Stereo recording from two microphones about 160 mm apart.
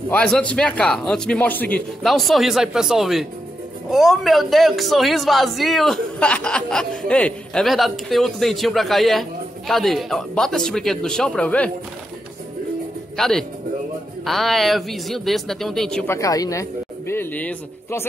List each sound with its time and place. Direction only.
0.1 s a man's voice: 10° left (ahead or behind)
13.1 s a man's voice: centre (ahead or behind)
16.1 s speech: 20° left (ahead or behind)